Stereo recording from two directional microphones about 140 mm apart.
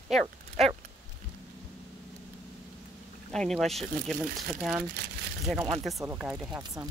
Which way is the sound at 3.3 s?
5° left (ahead or behind).